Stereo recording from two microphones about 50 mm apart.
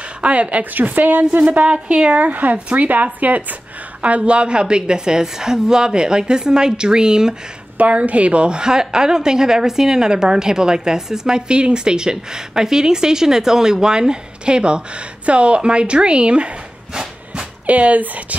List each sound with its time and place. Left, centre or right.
0.2 s a woman's voice: right
7.7 s a woman's voice: right